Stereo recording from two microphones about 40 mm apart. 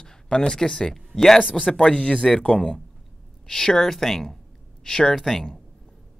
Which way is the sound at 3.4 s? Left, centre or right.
Centre.